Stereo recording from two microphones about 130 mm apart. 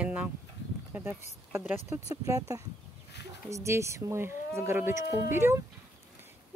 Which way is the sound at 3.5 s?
20° right (ahead or behind).